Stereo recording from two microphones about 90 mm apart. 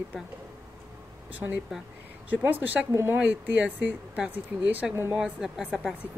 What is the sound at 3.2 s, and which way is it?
Speech, 20° right (ahead or behind).